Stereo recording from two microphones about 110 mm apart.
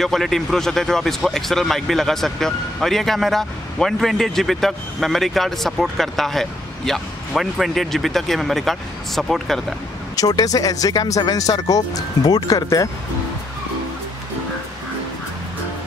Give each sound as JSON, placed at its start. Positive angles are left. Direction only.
{"t": 0.0, "sound": "speech", "side_deg": 0}
{"t": 10.1, "sound": "speech", "side_deg": 35}